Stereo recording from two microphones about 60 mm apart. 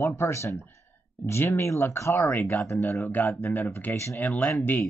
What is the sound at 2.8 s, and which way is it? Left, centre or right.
Speech, left.